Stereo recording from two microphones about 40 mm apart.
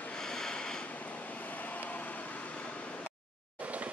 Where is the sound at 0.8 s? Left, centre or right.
Left.